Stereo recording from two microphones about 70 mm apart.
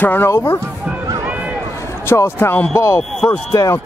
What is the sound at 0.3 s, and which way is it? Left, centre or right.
Speech, left.